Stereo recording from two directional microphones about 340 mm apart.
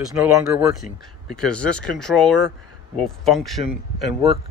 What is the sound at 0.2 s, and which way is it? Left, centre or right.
Speech, centre.